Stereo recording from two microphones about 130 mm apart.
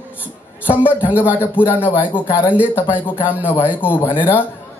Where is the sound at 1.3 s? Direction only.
15° left (ahead or behind).